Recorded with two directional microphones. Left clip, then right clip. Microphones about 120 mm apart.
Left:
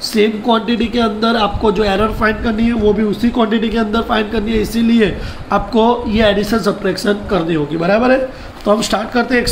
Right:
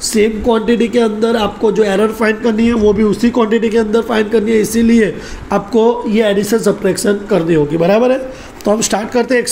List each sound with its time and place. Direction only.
0.1 s speech: 35° right (ahead or behind)